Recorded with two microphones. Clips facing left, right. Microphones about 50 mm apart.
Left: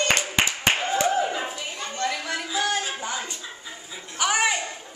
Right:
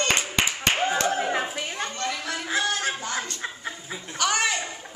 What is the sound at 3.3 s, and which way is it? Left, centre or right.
Chuckle, right.